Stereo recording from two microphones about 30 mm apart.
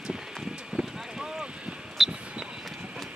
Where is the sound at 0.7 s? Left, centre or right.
Right.